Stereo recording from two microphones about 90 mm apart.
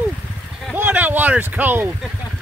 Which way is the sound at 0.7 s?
20° right (ahead or behind).